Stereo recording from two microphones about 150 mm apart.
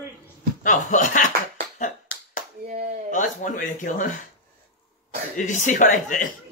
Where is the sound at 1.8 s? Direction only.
55° left (ahead or behind).